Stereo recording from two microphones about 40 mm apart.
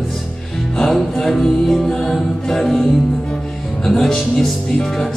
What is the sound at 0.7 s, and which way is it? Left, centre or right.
Music, centre.